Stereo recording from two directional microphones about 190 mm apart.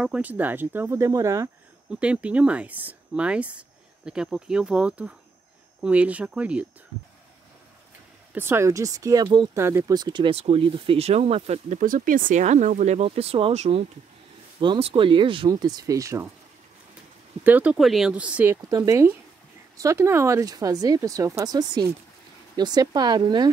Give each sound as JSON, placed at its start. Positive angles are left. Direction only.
{"t": 0.0, "sound": "speech", "side_deg": -5}
{"t": 8.4, "sound": "speech", "side_deg": -15}
{"t": 17.4, "sound": "speech", "side_deg": -10}